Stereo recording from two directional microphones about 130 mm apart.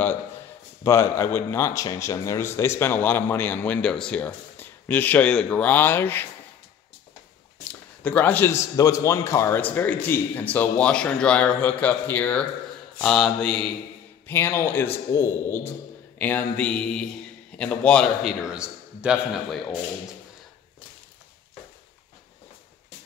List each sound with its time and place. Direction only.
0.8 s speech: 20° left (ahead or behind)
8.0 s a man's voice: 10° left (ahead or behind)
13.0 s mantra: 5° left (ahead or behind)
14.2 s speech: 20° left (ahead or behind)
18.4 s a man's voice: 5° right (ahead or behind)
19.5 s mantra: centre (ahead or behind)